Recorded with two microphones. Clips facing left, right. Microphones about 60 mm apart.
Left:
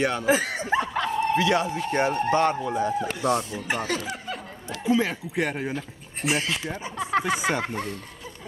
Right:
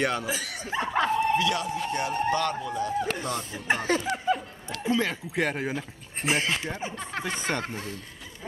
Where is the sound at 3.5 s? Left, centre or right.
Right.